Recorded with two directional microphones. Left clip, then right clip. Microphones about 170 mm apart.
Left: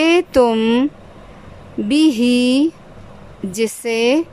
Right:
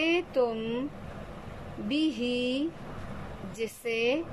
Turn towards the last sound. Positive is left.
turn(degrees=45)  # may be behind; listen again after turning